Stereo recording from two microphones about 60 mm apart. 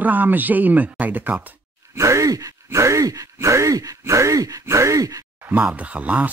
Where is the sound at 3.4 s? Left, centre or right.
Right.